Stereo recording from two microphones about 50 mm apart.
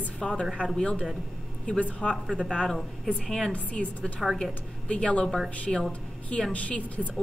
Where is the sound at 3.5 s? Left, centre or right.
Left.